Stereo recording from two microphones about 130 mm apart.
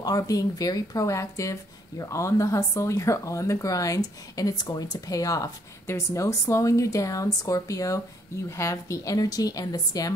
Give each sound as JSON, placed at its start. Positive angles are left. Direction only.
{"t": 0.0, "sound": "speech", "side_deg": 30}